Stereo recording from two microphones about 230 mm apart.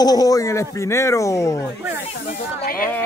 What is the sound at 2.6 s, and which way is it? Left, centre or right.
Speech, left.